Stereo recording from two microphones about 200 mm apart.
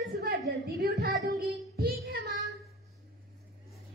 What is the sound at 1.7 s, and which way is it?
Child singing, 50° right (ahead or behind).